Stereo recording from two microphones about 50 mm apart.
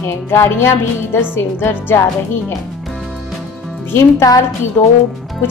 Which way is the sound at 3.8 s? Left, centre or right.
Left.